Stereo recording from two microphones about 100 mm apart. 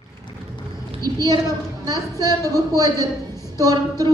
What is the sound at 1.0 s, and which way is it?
A woman's voice, 40° right (ahead or behind).